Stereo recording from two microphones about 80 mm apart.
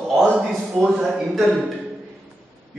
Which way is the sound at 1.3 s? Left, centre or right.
Centre.